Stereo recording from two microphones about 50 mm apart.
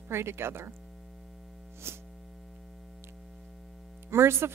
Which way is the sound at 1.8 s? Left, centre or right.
Right.